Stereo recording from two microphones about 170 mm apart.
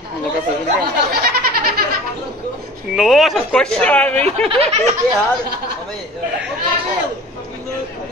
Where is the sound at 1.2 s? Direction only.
60° right (ahead or behind).